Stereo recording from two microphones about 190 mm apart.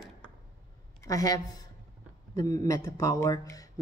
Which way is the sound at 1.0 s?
20° left (ahead or behind).